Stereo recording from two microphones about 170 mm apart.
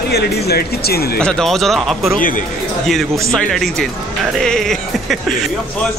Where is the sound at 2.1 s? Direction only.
55° left (ahead or behind).